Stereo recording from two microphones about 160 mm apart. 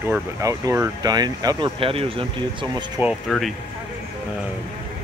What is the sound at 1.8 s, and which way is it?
Speech, 35° right (ahead or behind).